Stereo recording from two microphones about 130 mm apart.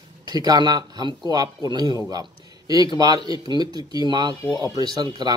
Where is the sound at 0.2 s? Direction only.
30° right (ahead or behind).